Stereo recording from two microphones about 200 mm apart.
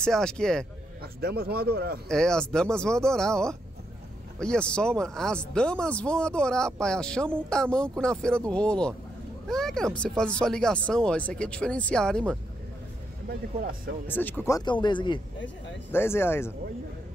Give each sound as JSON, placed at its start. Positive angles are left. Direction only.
{"t": 0.0, "sound": "speech", "side_deg": 5}
{"t": 1.0, "sound": "a man's voice", "side_deg": -50}
{"t": 2.0, "sound": "speech", "side_deg": 5}
{"t": 14.0, "sound": "speech", "side_deg": 10}
{"t": 15.9, "sound": "speech", "side_deg": 10}